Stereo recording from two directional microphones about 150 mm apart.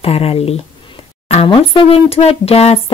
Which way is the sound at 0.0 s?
40° left (ahead or behind).